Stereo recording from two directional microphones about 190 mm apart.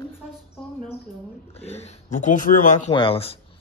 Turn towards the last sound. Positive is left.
turn(degrees=30)  # may be behind; listen again after turning